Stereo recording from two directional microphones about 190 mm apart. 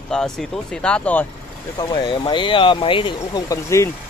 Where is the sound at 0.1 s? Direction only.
5° left (ahead or behind).